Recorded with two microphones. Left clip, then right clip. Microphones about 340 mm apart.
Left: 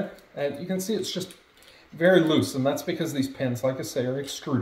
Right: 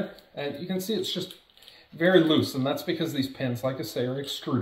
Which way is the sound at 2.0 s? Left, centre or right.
Centre.